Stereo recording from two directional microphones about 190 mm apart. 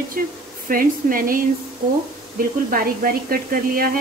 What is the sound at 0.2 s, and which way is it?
Speech, 45° right (ahead or behind).